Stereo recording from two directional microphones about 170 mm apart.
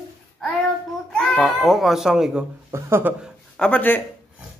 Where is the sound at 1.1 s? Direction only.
5° left (ahead or behind); by 3.3 s 10° right (ahead or behind).